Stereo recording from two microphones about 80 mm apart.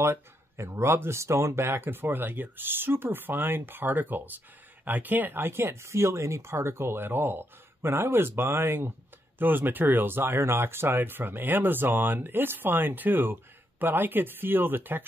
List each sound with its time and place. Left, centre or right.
0.0 s speech: right